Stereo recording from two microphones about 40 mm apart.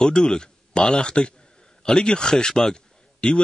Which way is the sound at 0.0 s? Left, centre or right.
Centre.